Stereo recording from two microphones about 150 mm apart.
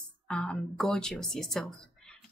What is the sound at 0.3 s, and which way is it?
Speech, 5° left (ahead or behind).